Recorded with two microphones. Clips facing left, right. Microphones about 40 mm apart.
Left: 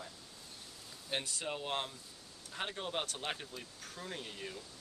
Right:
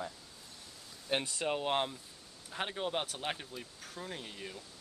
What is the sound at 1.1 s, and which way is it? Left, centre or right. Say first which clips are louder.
Speech: right 5 dB; right.